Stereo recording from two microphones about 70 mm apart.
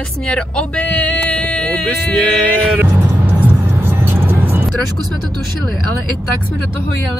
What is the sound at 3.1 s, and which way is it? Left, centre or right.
Music, right.